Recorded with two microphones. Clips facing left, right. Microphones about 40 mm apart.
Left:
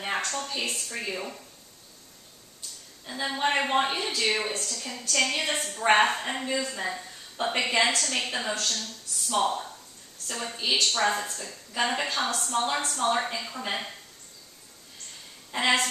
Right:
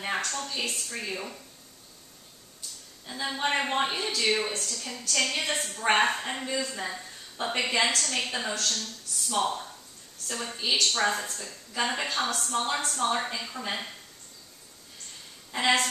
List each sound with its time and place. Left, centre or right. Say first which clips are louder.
0.0 s a woman's voice: left 1 dB; centre
3.1 s a woman's voice: left 2 dB; centre
15.5 s a woman's voice: even; centre